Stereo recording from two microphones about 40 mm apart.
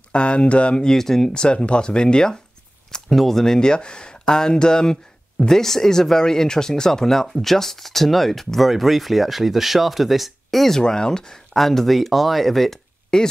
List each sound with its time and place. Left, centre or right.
0.1 s speech: left
0.7 s speech: centre
1.3 s speech: left
2.9 s speech: centre
10.8 s speech: centre
11.5 s speech: centre